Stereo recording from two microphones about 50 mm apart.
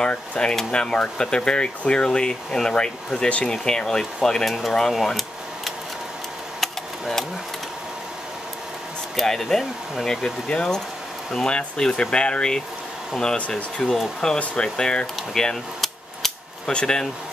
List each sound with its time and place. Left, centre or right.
0.0 s speech: left; by 5.2 s centre
6.6 s a sound: centre
9.1 s speech: centre
13.8 s speech: centre
14.4 s speech: centre
15.1 s a sound: centre
16.7 s speech: centre